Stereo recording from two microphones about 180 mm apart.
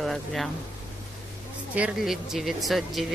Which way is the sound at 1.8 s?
5° right (ahead or behind).